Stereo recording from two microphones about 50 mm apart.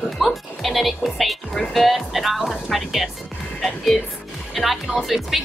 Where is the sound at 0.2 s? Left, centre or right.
Centre.